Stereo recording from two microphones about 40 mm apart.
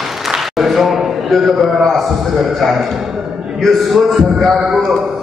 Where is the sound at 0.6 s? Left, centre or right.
Centre.